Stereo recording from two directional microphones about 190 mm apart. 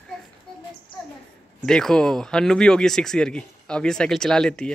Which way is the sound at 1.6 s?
5° left (ahead or behind).